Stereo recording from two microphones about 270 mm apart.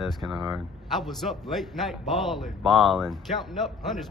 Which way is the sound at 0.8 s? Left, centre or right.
Centre.